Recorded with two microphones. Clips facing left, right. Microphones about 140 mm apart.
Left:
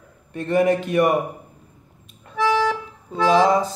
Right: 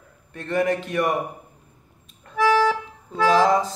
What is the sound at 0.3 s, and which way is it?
Speech, 15° left (ahead or behind).